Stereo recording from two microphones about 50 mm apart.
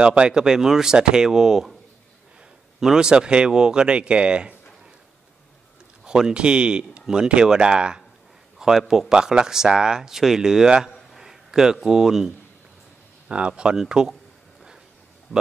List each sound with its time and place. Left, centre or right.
0.0 s speech: right
2.8 s speech: centre
6.0 s a man's voice: centre
13.3 s speech: right